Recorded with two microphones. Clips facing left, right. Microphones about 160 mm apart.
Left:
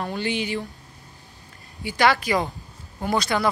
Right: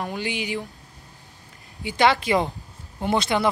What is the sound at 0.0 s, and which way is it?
Speech, 15° right (ahead or behind).